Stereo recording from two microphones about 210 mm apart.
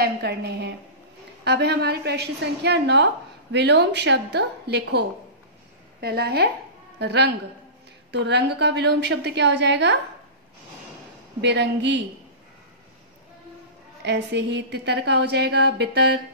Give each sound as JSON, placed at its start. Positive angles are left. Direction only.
{"t": 0.0, "sound": "a woman's voice", "side_deg": -50}
{"t": 11.4, "sound": "a woman's voice", "side_deg": -55}
{"t": 14.0, "sound": "a woman's voice", "side_deg": -55}